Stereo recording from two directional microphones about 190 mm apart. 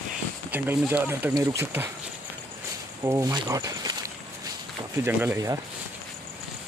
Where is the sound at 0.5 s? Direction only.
10° right (ahead or behind).